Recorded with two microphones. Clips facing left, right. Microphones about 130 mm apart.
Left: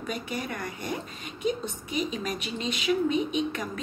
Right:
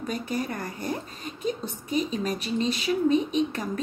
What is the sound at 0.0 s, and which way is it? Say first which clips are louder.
Speech: right 3 dB; 35° right (ahead or behind).